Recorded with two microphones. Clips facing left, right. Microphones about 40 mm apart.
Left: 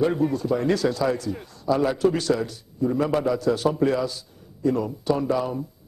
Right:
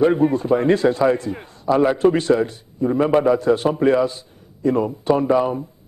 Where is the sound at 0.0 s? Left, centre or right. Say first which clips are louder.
Right 6 dB; right.